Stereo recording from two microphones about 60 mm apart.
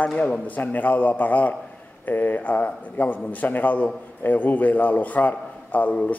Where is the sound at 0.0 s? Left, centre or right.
Left.